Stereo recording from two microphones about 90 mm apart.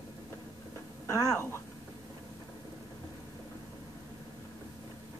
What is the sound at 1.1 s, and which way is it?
Speech, 30° left (ahead or behind).